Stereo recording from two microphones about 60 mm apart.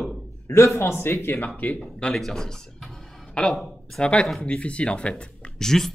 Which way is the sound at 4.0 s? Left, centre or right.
Centre.